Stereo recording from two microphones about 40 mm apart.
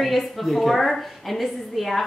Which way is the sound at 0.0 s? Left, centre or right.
Centre.